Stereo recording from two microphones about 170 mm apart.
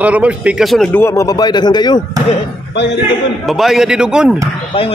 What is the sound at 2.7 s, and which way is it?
Speech, 90° left.